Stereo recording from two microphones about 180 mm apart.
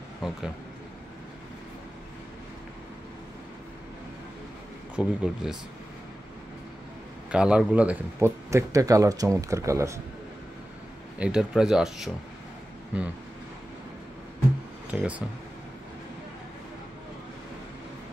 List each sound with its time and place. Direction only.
0.2 s speech: centre (ahead or behind)
4.9 s speech: 5° right (ahead or behind)
7.2 s speech: 5° right (ahead or behind)
11.1 s speech: 5° right (ahead or behind)
14.9 s speech: 5° right (ahead or behind)